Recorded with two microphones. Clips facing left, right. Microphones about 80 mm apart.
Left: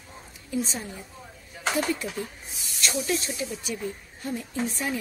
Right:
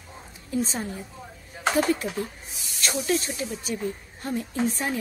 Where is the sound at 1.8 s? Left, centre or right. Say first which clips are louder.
Right 4 dB; right.